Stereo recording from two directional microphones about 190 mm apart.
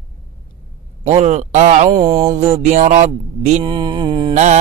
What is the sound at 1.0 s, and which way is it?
Mantra, 35° right (ahead or behind).